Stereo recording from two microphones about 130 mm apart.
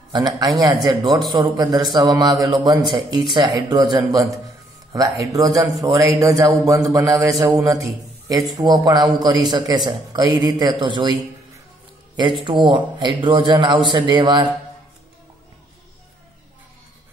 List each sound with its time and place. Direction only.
0.1 s a man's voice: 30° right (ahead or behind)
12.4 s a man's voice: 40° right (ahead or behind)